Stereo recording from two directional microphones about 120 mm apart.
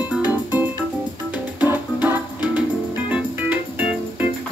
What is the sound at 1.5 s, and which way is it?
Music, 10° right (ahead or behind).